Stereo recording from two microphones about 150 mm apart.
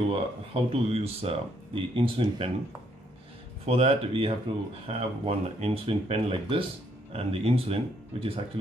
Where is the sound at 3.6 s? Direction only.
45° right (ahead or behind).